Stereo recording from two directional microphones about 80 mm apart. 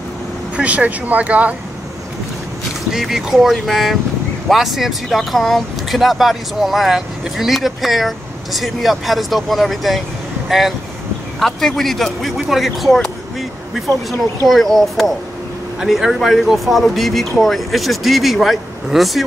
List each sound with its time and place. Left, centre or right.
0.6 s speech: centre
2.9 s speech: centre
11.3 s a man's voice: centre